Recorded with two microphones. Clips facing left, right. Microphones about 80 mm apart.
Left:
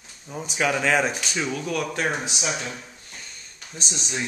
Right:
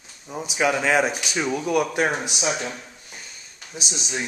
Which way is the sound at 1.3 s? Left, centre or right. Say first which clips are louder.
Right 4 dB; centre.